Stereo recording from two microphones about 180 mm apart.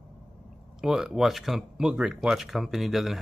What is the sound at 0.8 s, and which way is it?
Speech, 5° right (ahead or behind).